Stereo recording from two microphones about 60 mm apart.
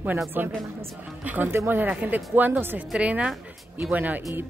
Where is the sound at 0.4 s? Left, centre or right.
Right.